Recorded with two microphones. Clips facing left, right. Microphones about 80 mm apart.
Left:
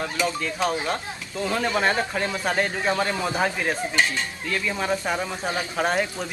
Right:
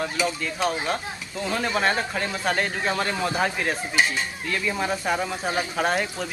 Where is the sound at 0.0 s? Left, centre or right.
Centre.